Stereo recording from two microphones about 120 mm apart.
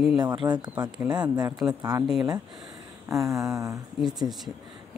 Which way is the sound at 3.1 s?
25° right (ahead or behind).